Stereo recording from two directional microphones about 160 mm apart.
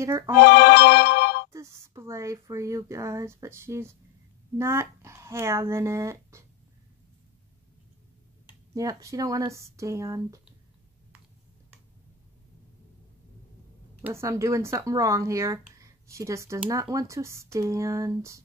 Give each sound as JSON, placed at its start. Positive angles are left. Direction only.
{"t": 0.0, "sound": "speech", "side_deg": -20}
{"t": 0.4, "sound": "music", "side_deg": 85}
{"t": 1.5, "sound": "speech", "side_deg": -20}
{"t": 8.7, "sound": "speech", "side_deg": -20}
{"t": 14.0, "sound": "speech", "side_deg": -15}